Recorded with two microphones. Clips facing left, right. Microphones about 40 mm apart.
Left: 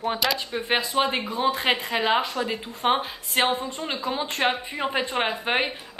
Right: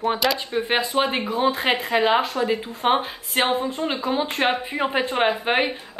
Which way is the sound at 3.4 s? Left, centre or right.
Centre.